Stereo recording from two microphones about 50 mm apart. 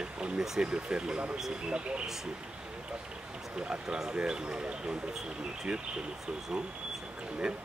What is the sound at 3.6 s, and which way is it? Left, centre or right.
Speech, centre.